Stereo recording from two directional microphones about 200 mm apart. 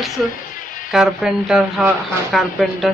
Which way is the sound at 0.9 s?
5° right (ahead or behind).